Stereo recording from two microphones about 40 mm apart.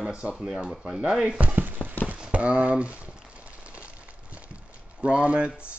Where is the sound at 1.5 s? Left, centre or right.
Right.